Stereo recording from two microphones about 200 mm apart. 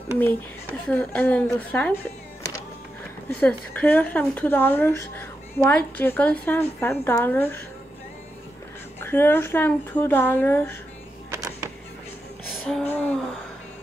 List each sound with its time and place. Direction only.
0.2 s a woman's voice: 10° left (ahead or behind)
3.3 s a woman's voice: 10° left (ahead or behind)
9.0 s a woman's voice: 10° left (ahead or behind)
11.3 s music: 15° right (ahead or behind)
12.4 s music: centre (ahead or behind)